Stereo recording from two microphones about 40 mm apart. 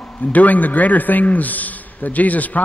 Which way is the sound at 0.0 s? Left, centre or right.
Left.